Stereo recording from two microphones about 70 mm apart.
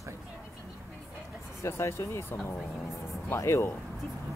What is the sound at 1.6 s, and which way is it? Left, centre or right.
Speech, left.